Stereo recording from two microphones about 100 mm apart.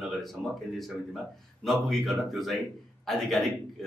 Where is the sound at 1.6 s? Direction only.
Centre (ahead or behind).